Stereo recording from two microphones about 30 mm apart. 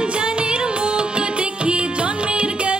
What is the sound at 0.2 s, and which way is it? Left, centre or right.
Music, right.